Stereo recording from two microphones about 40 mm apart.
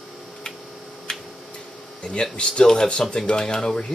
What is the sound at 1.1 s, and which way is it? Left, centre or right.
Tick-tock, centre.